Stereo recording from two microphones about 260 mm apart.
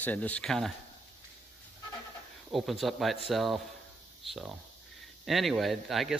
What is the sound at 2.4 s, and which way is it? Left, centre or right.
Speech, centre.